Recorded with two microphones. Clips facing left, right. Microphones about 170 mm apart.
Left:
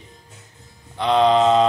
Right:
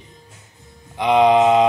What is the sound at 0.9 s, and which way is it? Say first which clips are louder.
Music: right 2 dB; 15° right (ahead or behind).